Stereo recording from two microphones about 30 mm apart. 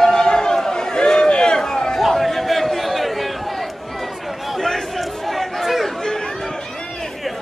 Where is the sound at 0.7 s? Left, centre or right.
Left.